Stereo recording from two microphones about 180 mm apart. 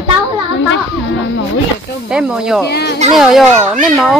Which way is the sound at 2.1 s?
5° right (ahead or behind).